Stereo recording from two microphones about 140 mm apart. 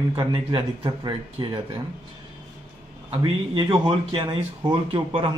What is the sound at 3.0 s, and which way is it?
Speech, 35° right (ahead or behind).